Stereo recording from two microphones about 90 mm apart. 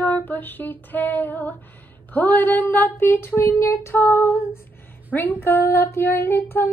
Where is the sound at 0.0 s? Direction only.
20° left (ahead or behind).